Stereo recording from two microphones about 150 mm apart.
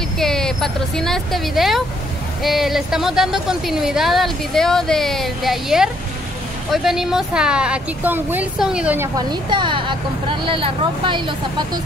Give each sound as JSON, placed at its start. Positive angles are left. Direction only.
{"t": 0.2, "sound": "a woman's voice", "side_deg": 5}
{"t": 9.1, "sound": "speech", "side_deg": -30}